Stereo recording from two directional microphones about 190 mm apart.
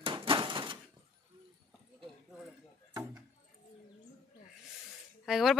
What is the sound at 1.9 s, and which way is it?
Clip-clop, centre (ahead or behind).